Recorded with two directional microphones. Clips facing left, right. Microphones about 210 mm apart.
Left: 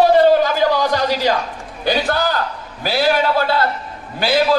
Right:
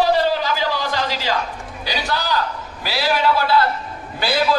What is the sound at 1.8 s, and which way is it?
A man's voice, 55° left (ahead or behind).